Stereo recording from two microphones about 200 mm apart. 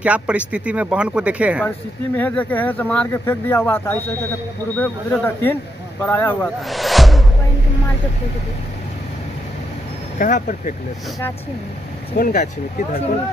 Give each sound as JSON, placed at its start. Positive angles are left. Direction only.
{"t": 0.0, "sound": "speech", "side_deg": -5}
{"t": 2.1, "sound": "speech", "side_deg": 10}
{"t": 10.1, "sound": "speech", "side_deg": 40}
{"t": 12.1, "sound": "speech", "side_deg": 40}